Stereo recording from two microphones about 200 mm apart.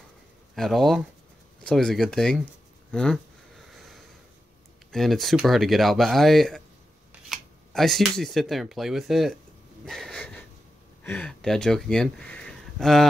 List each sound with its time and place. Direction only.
0.6 s speech: centre (ahead or behind)
2.9 s a sound: 5° left (ahead or behind)
4.9 s speech: centre (ahead or behind)
9.8 s wheeze: centre (ahead or behind)
11.1 s speech: 5° left (ahead or behind)